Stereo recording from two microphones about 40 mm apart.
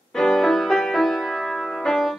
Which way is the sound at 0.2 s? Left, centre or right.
Centre.